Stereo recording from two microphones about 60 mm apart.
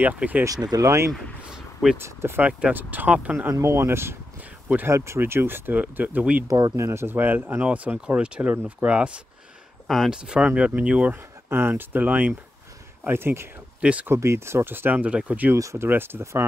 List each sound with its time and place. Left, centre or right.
0.0 s speech: right
0.7 s speech: right
2.0 s speech: right
2.4 s speech: right
3.5 s speech: right
6.4 s speech: right
7.6 s speech: right
9.8 s speech: centre; by 11.1 s right
11.4 s speech: right
13.0 s speech: right
13.7 s speech: right
14.0 s speech: right
15.5 s speech: right
15.9 s speech: right